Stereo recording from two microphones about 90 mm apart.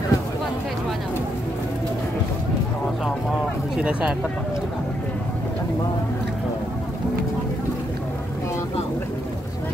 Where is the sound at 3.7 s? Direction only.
10° right (ahead or behind).